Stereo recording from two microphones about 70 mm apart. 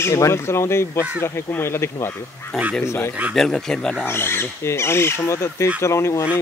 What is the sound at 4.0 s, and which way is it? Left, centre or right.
Speech, left.